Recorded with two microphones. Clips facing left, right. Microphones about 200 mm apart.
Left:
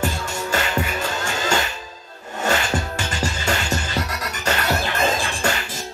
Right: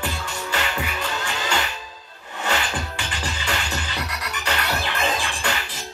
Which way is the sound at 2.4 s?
45° left (ahead or behind).